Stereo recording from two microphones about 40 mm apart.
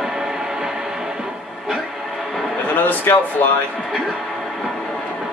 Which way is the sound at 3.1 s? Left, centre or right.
Left.